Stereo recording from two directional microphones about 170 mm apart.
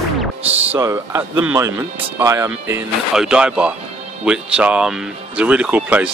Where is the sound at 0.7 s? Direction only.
20° right (ahead or behind).